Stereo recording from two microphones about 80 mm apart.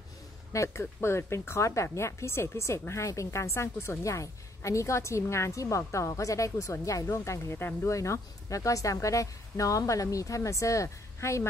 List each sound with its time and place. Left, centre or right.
0.5 s a woman's voice: left